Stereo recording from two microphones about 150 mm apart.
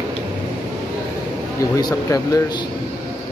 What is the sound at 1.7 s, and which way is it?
Speech, 25° left (ahead or behind).